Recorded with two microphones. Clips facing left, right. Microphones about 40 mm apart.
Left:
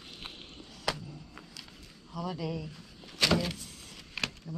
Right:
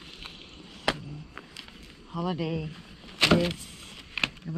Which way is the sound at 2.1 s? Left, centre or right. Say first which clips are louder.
Right 5 dB; right.